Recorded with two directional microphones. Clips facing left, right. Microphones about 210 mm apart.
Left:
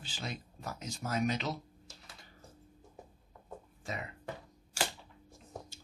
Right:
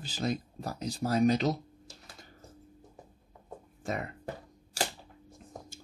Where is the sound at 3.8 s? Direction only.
50° right (ahead or behind).